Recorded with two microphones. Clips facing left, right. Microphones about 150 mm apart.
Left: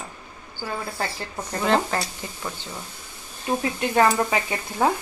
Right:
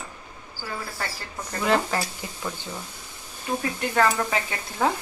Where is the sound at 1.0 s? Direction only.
25° left (ahead or behind).